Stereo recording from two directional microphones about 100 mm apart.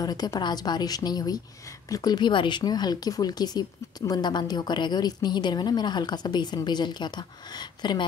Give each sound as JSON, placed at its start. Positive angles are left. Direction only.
{"t": 0.0, "sound": "a woman's voice", "side_deg": 40}